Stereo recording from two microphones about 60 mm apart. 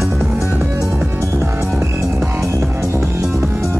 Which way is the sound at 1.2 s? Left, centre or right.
Right.